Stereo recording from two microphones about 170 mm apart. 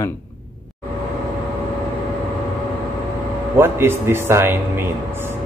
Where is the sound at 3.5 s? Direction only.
15° right (ahead or behind).